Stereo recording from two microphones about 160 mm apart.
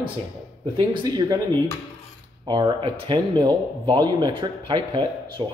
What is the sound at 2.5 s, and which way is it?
Speech, 30° right (ahead or behind).